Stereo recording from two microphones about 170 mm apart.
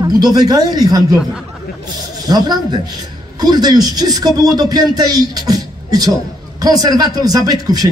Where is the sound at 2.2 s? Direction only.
25° right (ahead or behind).